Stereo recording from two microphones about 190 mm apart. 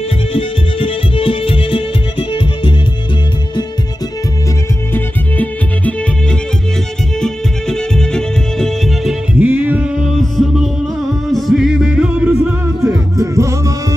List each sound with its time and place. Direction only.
0.3 s music: 30° left (ahead or behind)
4.9 s music: 10° left (ahead or behind)
7.2 s music: 5° left (ahead or behind)
9.4 s music: 10° right (ahead or behind)
13.2 s music: 15° right (ahead or behind)